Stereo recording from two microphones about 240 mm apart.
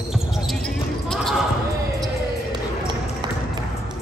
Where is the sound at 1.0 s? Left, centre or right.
Centre.